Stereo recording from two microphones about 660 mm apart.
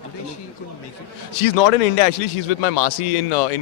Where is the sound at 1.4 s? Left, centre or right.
Left.